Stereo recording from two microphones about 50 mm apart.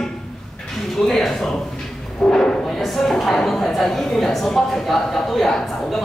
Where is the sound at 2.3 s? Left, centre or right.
Centre.